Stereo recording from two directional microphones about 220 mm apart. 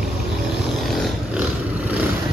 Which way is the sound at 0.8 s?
Centre (ahead or behind).